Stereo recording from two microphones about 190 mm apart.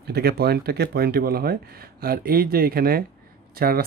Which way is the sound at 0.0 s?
55° right (ahead or behind).